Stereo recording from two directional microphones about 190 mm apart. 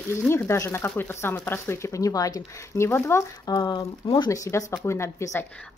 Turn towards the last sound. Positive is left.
turn(degrees=15)  # may be behind; listen again after turning